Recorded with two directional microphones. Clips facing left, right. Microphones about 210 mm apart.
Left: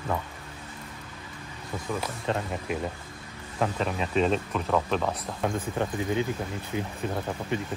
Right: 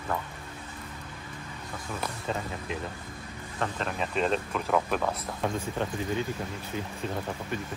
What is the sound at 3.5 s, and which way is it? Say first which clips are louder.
Speech: left 4 dB; 5° left (ahead or behind).